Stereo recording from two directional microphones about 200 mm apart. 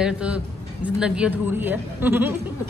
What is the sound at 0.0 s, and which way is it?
A man's voice, 5° right (ahead or behind).